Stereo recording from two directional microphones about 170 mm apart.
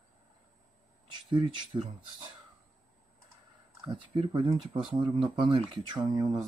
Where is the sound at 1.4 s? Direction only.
30° right (ahead or behind).